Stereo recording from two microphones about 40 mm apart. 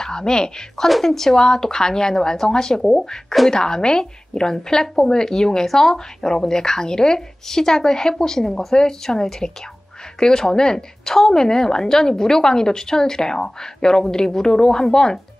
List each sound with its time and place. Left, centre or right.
0.0 s speech: centre
0.8 s a woman's voice: centre